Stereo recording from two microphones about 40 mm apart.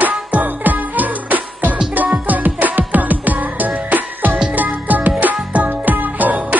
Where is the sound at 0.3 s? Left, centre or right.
Right.